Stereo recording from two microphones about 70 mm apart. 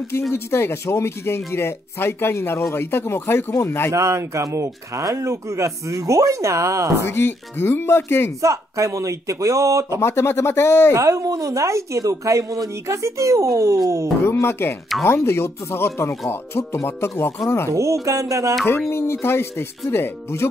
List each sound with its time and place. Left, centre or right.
0.3 s speech: left
3.9 s speech: right
7.1 s speech: left
8.4 s speech: right
9.9 s speech: left
10.9 s speech: right
14.2 s speech: left
18.0 s speech: right
18.9 s speech: left